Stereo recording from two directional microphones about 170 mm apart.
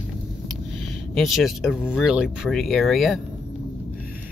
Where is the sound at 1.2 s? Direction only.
Centre (ahead or behind).